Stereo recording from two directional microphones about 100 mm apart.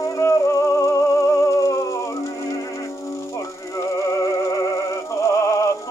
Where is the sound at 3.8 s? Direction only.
35° left (ahead or behind).